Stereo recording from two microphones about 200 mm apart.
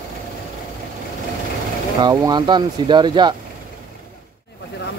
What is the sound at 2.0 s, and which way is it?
Speech, 20° right (ahead or behind).